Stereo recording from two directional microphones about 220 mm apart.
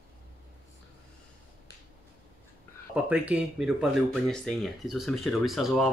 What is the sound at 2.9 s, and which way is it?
Speech, 5° right (ahead or behind).